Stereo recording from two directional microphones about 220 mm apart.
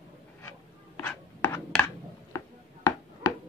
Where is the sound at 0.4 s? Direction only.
10° left (ahead or behind).